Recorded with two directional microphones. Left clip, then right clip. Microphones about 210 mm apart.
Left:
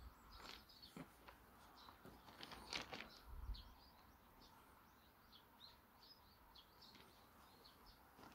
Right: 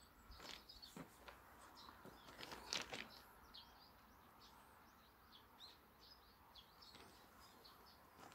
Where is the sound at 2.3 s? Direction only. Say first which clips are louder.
Right 2 dB; 10° right (ahead or behind).